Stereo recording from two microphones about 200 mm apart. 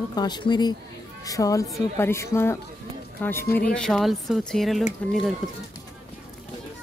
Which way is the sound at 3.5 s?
50° left (ahead or behind).